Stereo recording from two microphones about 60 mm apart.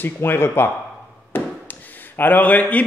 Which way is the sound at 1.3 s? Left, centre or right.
Left.